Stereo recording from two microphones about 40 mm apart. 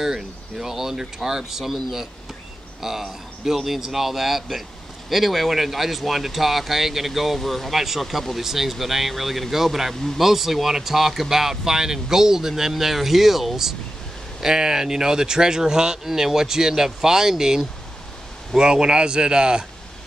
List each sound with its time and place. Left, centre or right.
0.0 s speech: centre